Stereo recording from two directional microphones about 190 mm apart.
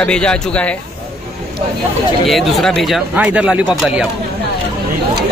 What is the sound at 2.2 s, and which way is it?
Speech, centre (ahead or behind).